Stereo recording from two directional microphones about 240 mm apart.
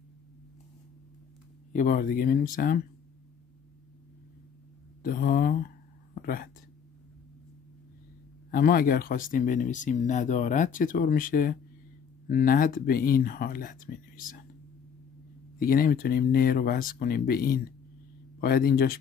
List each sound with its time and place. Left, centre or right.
1.7 s speech: left
5.0 s speech: left
6.1 s whispering: left
8.5 s speech: left
15.6 s speech: left